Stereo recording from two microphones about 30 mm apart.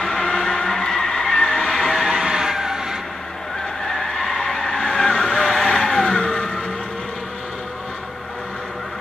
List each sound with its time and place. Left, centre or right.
0.1 s vehicle: left
2.0 s a sound: centre
3.8 s skidding: centre
5.7 s vehicle: left